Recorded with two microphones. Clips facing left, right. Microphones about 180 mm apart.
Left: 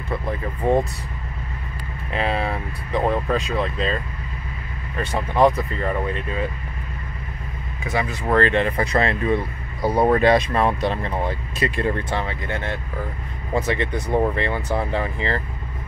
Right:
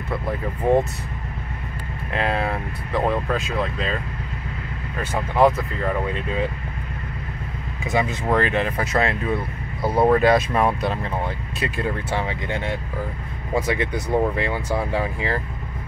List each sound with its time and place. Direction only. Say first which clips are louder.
2.1 s speech: even; centre (ahead or behind)
5.0 s speech: even; 5° right (ahead or behind)
7.8 s speech: right 2 dB; 20° right (ahead or behind)
8.3 s speech: left 5 dB; 10° right (ahead or behind)